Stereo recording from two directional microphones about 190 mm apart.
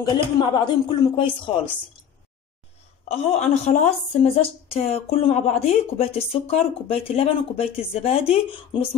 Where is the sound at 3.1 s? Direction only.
35° left (ahead or behind).